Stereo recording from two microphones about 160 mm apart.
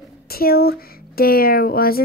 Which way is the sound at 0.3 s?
70° left (ahead or behind).